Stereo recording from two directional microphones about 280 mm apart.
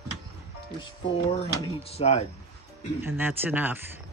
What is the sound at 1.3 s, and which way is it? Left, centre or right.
Speech, left.